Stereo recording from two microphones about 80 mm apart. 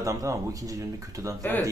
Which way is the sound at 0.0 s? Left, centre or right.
Right.